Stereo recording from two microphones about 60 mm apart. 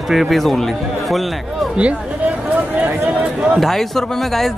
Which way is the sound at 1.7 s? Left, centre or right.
Centre.